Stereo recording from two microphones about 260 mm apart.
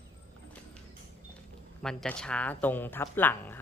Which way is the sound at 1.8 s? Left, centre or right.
Centre.